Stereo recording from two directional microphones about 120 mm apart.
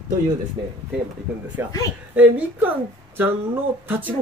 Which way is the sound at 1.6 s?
20° right (ahead or behind).